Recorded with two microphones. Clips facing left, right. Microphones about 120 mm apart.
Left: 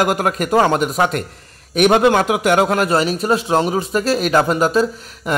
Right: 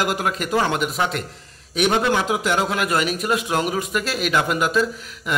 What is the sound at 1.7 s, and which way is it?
A man's voice, 55° left (ahead or behind).